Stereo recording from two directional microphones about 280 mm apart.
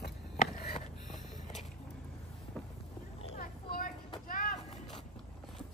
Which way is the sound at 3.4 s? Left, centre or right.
Left.